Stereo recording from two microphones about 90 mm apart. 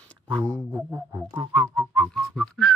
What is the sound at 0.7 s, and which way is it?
Music, 20° right (ahead or behind).